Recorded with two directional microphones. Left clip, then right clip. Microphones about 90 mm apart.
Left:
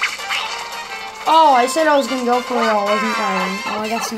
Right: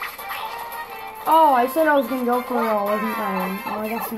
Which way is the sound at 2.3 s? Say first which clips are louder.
Left 5 dB; 10° right (ahead or behind).